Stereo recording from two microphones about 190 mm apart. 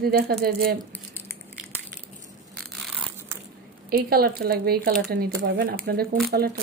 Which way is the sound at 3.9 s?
55° right (ahead or behind).